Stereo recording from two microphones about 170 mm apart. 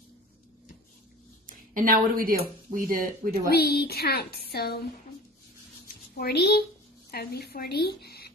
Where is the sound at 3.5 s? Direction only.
70° left (ahead or behind).